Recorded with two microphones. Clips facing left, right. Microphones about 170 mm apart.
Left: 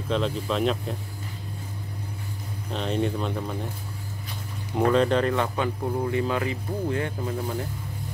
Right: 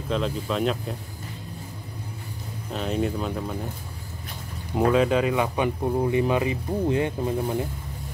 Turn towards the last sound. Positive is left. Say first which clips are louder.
# right 4 dB
turn(degrees=-20)  # may be behind; listen again after turning